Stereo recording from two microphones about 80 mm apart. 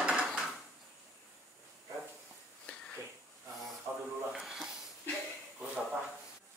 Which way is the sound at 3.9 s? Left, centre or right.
Right.